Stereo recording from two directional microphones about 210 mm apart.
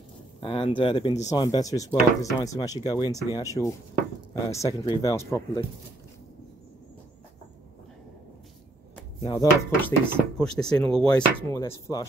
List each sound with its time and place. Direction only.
0.4 s speech: 25° left (ahead or behind)
9.2 s speech: 15° left (ahead or behind)